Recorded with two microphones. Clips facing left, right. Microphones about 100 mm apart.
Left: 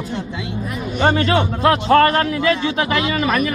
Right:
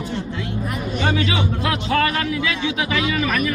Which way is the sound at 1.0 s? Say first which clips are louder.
Left 6 dB; 50° left (ahead or behind).